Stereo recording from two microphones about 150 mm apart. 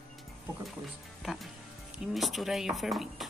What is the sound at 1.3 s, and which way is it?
Speech, centre (ahead or behind).